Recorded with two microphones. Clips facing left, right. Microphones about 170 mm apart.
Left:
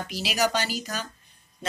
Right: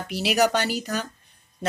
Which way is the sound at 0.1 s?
60° right (ahead or behind).